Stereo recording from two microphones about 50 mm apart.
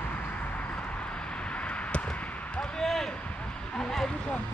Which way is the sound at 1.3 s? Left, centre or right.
Left.